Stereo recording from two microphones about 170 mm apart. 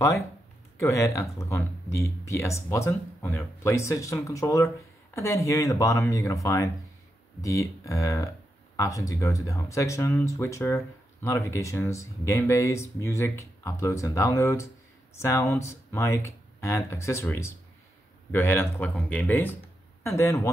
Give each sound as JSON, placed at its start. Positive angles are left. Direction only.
{"t": 0.7, "sound": "speech", "side_deg": 15}